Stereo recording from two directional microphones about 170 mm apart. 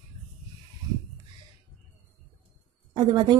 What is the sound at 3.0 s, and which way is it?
Speech, 25° right (ahead or behind).